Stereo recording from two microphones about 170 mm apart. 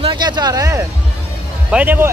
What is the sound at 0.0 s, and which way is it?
Speech, 25° right (ahead or behind).